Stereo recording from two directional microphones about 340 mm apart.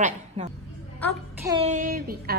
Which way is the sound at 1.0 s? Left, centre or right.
Centre.